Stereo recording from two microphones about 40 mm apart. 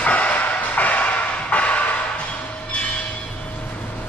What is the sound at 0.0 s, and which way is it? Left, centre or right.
Music, left.